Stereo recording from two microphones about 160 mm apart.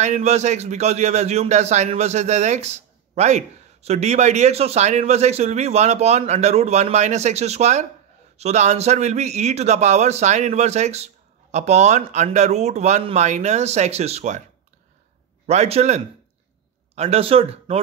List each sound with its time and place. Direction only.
0.0 s a man's voice: 45° right (ahead or behind)
15.4 s a man's voice: 45° right (ahead or behind)